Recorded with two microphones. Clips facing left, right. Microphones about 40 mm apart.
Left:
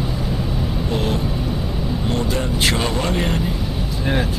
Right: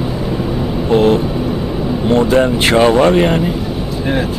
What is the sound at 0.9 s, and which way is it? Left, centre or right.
Speech, right.